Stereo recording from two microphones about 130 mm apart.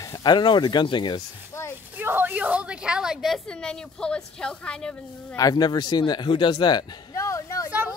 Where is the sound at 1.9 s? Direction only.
15° right (ahead or behind); by 4.9 s 5° left (ahead or behind).